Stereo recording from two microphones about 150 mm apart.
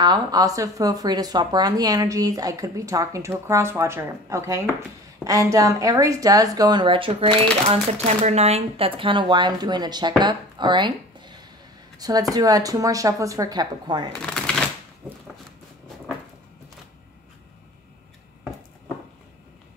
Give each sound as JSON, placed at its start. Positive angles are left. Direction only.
{"t": 0.0, "sound": "speech", "side_deg": -25}
{"t": 14.1, "sound": "shuffling cards", "side_deg": 5}